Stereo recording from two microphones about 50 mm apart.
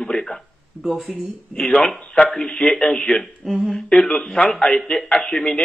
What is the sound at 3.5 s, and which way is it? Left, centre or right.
Speech, centre.